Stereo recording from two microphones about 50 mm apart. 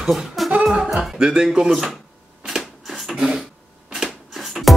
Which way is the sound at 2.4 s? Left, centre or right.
Centre.